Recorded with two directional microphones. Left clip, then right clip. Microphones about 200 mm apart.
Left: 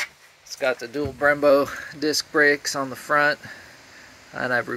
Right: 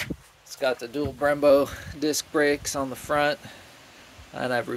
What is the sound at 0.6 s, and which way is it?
Speech, 5° right (ahead or behind).